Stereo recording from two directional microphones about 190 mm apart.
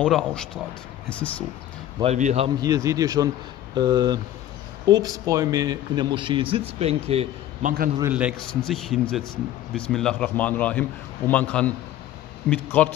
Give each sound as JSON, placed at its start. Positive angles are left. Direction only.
{"t": 0.0, "sound": "a man's voice", "side_deg": 5}
{"t": 2.0, "sound": "a man's voice", "side_deg": -35}
{"t": 2.6, "sound": "a man's voice", "side_deg": -15}
{"t": 8.0, "sound": "a man's voice", "side_deg": -5}